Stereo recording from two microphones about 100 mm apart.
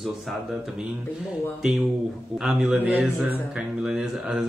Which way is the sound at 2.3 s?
10° right (ahead or behind).